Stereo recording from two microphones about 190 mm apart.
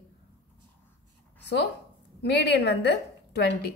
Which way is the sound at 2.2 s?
60° left (ahead or behind).